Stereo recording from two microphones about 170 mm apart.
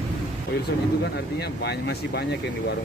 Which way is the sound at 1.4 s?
70° left (ahead or behind).